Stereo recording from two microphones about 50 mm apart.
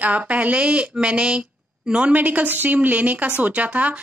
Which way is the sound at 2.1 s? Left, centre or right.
Right.